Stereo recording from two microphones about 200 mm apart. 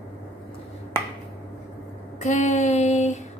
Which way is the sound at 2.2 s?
35° left (ahead or behind).